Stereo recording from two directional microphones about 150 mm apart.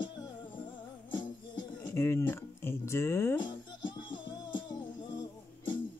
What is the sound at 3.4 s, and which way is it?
Music, 30° left (ahead or behind).